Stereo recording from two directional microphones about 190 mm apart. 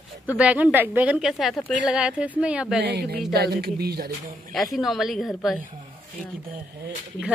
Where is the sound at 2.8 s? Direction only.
60° right (ahead or behind).